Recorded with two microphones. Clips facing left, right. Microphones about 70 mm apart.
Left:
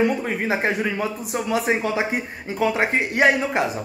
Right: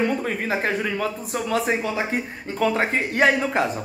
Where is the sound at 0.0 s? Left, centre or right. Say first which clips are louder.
Left 2 dB; centre.